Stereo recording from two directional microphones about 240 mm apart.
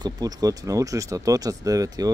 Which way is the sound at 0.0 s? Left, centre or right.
Centre.